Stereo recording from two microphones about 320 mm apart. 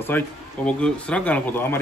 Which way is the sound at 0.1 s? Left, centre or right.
Centre.